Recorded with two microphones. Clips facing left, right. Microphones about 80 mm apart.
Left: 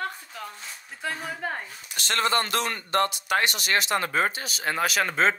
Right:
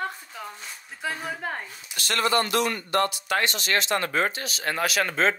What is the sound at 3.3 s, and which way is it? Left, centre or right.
Speech, centre.